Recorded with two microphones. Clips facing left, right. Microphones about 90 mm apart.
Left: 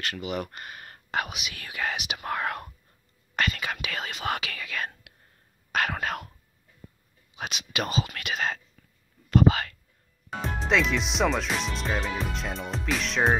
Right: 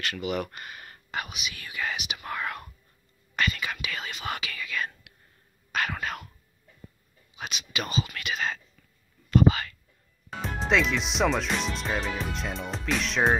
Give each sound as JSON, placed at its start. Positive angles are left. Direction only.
{"t": 0.0, "sound": "speech", "side_deg": 35}
{"t": 1.1, "sound": "speech", "side_deg": 80}
{"t": 5.7, "sound": "whispering", "side_deg": 60}
{"t": 7.3, "sound": "speech", "side_deg": 65}
{"t": 10.4, "sound": "speech", "side_deg": 0}